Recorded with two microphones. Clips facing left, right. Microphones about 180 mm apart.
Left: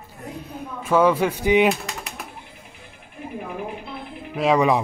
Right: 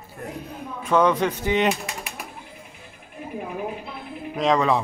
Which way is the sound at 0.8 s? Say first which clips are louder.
Left 2 dB; 5° left (ahead or behind).